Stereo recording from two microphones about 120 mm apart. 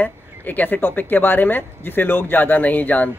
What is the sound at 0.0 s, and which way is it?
Speech, 15° left (ahead or behind).